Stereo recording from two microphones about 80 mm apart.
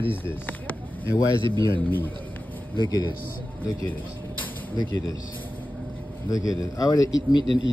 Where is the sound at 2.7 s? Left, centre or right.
Left.